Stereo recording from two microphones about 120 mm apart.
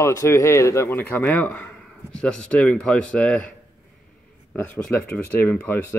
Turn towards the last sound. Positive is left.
turn(degrees=15)  # may be behind; listen again after turning